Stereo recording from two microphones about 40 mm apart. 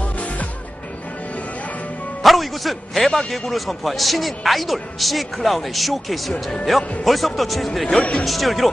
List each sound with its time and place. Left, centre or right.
2.2 s a man's voice: centre
7.8 s speech: left
8.3 s a man's voice: centre